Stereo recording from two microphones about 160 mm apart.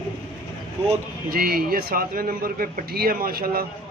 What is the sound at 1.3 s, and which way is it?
Speech, 70° right (ahead or behind).